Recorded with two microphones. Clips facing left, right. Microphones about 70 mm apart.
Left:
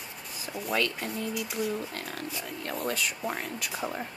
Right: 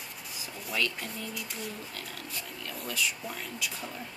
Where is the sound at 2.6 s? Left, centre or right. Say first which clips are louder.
Left 3 dB; left.